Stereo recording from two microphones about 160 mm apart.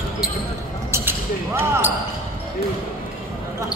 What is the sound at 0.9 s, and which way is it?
Basketball bounce, 15° right (ahead or behind).